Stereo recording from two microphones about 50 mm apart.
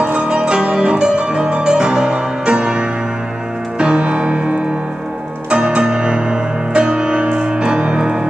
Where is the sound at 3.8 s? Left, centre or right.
Right.